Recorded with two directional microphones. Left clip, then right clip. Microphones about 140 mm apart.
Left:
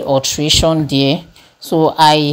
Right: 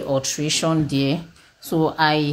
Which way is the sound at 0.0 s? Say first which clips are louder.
Left 8 dB; 25° left (ahead or behind).